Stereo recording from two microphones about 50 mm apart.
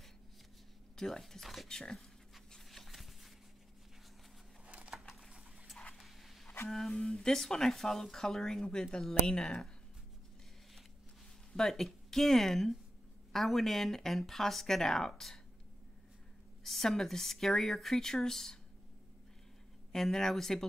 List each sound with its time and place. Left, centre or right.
0.9 s speech: centre
1.7 s speech: centre
2.5 s a sound: centre
4.6 s a sound: right
4.9 s a sound: centre
5.9 s dog: centre
6.9 s speech: centre
11.5 s speech: centre
16.6 s speech: centre
19.9 s speech: centre